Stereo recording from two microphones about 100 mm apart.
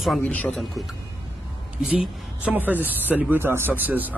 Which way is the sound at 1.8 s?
15° right (ahead or behind).